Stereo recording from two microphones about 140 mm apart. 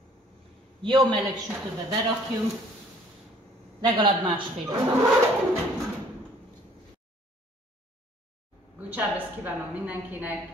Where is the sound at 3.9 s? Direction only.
35° right (ahead or behind).